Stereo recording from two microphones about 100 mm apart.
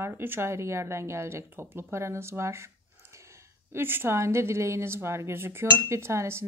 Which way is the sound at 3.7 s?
25° right (ahead or behind).